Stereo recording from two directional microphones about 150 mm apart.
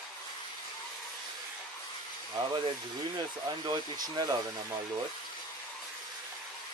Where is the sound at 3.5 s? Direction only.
30° right (ahead or behind).